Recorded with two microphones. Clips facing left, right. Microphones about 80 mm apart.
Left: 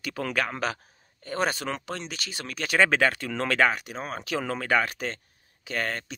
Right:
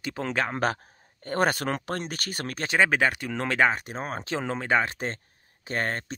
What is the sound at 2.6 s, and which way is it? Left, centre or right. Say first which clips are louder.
Speech: left 1 dB; centre.